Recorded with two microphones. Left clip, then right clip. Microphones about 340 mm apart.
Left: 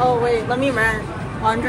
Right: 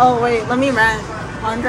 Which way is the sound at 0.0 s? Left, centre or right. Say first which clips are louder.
Right 4 dB; right.